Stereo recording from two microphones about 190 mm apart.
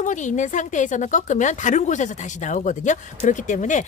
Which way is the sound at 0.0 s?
40° left (ahead or behind).